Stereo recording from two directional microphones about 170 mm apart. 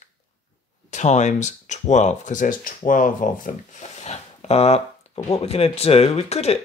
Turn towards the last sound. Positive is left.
turn(degrees=40)  # may be behind; listen again after turning